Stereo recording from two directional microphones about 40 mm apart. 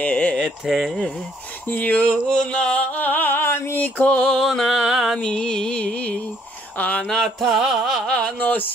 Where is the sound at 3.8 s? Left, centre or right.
Left.